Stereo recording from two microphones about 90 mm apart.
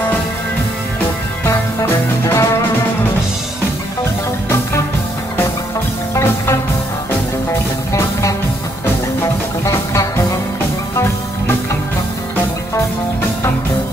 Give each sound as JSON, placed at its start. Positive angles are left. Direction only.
{"t": 1.8, "sound": "music", "side_deg": 35}
{"t": 6.1, "sound": "music", "side_deg": 30}
{"t": 7.9, "sound": "music", "side_deg": 35}
{"t": 9.7, "sound": "music", "side_deg": 35}